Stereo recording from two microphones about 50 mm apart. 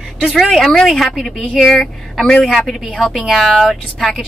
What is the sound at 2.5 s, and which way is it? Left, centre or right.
Speech, centre.